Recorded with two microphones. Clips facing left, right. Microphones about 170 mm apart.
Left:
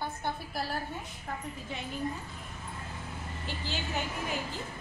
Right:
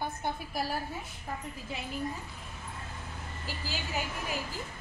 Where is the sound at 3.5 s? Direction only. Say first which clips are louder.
Left 1 dB; 5° right (ahead or behind).